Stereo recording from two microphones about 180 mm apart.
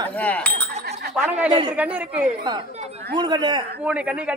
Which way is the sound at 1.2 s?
5° right (ahead or behind).